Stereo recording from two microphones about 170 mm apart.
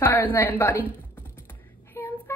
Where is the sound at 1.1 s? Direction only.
10° left (ahead or behind).